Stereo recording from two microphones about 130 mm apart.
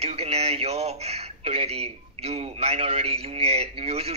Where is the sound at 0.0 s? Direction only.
50° right (ahead or behind).